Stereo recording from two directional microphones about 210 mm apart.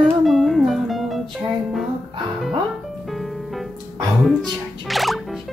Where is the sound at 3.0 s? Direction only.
Centre (ahead or behind).